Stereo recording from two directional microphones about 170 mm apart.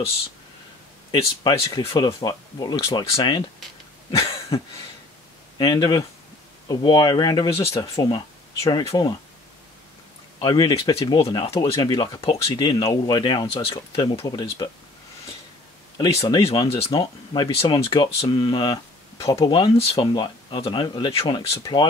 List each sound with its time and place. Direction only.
1.8 s speech: 35° left (ahead or behind)
4.1 s cough: 20° left (ahead or behind)
5.6 s speech: 25° left (ahead or behind)
10.4 s speech: 30° left (ahead or behind)
16.1 s speech: 35° left (ahead or behind)